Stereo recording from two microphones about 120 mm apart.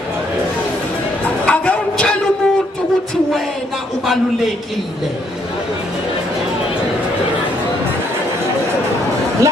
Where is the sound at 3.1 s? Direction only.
Centre (ahead or behind).